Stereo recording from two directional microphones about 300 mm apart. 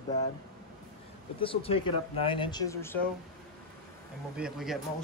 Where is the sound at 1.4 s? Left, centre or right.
Centre.